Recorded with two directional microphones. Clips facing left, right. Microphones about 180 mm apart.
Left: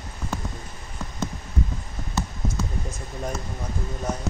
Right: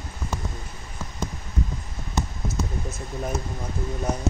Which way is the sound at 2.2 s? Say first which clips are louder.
Even; 15° right (ahead or behind).